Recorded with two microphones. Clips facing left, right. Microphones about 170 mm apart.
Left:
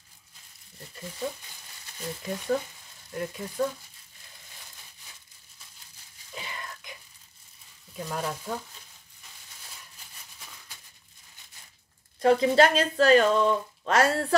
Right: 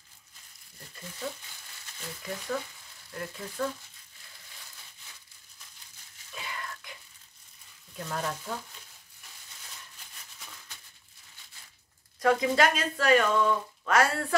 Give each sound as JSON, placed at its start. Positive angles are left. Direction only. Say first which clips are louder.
{"t": 2.0, "sound": "speech", "louder": "left 5 dB", "side_deg": 20}
{"t": 6.3, "sound": "a sound", "louder": "even", "side_deg": 25}
{"t": 8.0, "sound": "speech", "louder": "left 2 dB", "side_deg": 10}
{"t": 12.2, "sound": "speech", "louder": "left 4 dB", "side_deg": 30}